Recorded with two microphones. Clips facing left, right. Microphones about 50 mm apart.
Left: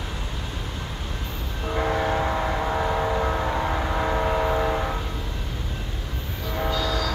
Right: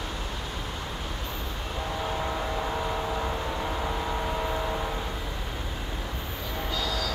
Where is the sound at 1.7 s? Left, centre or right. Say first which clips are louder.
Left 9 dB; left.